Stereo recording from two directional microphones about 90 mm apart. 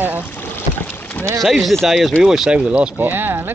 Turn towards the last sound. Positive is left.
turn(degrees=-20)  # may be behind; listen again after turning